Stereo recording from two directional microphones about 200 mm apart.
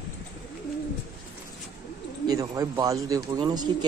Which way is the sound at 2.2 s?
20° right (ahead or behind).